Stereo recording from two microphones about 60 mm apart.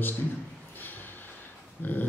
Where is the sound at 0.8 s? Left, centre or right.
Left.